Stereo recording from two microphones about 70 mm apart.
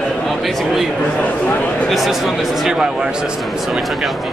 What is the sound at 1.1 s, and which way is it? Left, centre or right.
Speech, centre.